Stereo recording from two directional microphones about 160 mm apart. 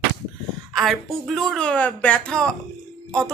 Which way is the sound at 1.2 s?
Centre (ahead or behind).